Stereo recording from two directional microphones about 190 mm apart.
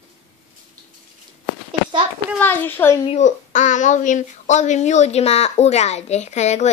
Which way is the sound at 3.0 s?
35° left (ahead or behind).